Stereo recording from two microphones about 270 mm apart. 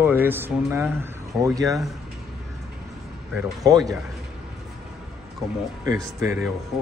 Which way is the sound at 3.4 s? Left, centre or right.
Centre.